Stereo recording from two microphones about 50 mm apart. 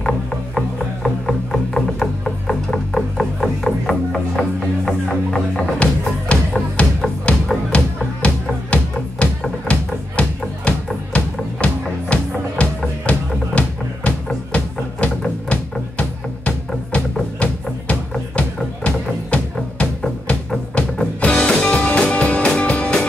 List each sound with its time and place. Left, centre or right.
0.6 s music: centre
5.8 s music: left
21.2 s music: left